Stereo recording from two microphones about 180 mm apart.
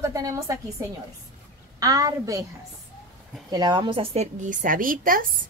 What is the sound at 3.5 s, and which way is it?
A woman's voice, 25° right (ahead or behind).